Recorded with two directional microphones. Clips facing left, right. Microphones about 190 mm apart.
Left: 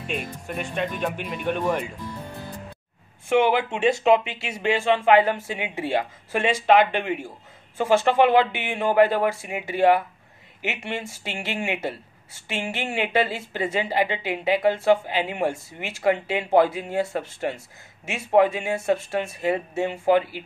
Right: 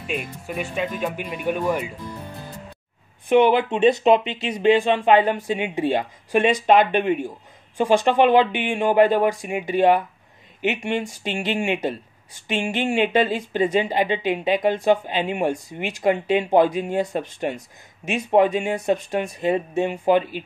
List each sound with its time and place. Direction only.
0.1 s speech: 5° right (ahead or behind)
3.3 s speech: 20° right (ahead or behind)